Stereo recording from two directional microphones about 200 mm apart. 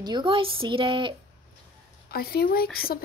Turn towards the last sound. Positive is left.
turn(degrees=50)  # may be behind; listen again after turning